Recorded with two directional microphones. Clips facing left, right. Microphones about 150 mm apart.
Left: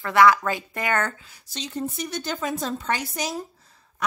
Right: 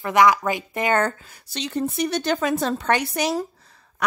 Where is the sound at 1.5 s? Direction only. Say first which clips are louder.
Right 5 dB; 70° right (ahead or behind).